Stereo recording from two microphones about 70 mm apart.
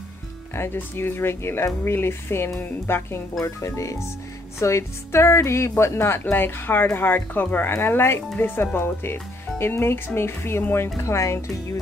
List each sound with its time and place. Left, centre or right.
0.6 s speech: left